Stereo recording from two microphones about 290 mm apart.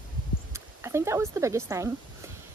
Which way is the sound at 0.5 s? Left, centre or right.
Centre.